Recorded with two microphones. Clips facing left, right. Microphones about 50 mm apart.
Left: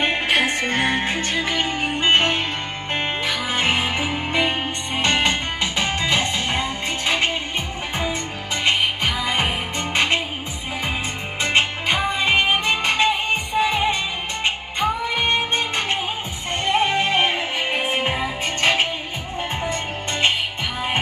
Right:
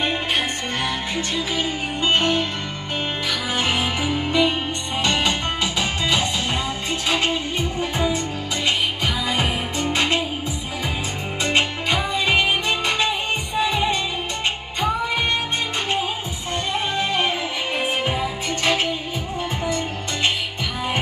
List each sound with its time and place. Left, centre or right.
0.0 s music: left
8.6 s music: left
11.4 s music: left
16.6 s music: left